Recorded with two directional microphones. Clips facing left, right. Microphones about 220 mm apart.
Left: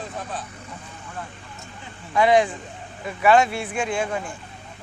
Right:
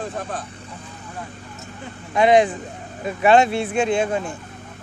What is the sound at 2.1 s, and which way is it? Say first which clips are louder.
Speech: right 3 dB; 20° right (ahead or behind).